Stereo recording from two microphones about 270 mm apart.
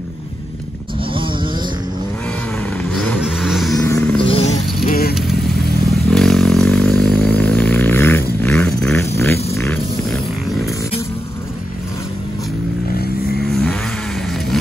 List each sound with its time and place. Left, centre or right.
1.1 s vehicle: centre
2.8 s vehicle: centre
3.7 s vehicle: centre
4.2 s a sound: left
4.8 s vehicle: left
5.9 s a sound: centre
13.5 s vehicle: centre